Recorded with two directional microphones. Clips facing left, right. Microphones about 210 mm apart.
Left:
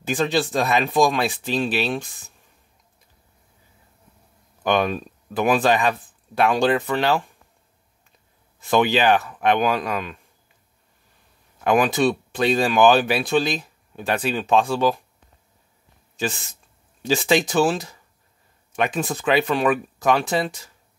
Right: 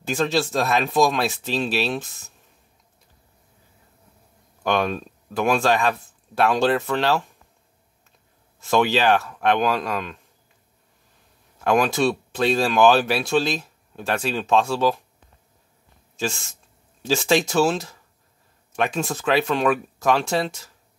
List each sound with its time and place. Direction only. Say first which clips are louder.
0.0 s speech: left 1 dB; centre (ahead or behind)
4.6 s speech: left 2 dB; 5° left (ahead or behind)
8.5 s speech: left 1 dB; centre (ahead or behind)
11.6 s speech: left 1 dB; centre (ahead or behind)
16.2 s speech: left 1 dB; centre (ahead or behind)